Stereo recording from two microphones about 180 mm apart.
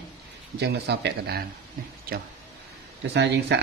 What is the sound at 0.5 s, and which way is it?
Speech, 65° right (ahead or behind).